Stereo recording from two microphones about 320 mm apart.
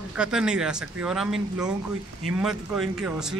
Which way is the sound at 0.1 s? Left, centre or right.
Centre.